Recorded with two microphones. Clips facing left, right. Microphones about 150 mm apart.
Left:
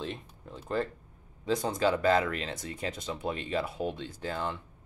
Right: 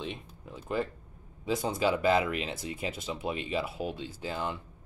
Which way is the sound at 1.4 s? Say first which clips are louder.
Left 1 dB; 5° right (ahead or behind).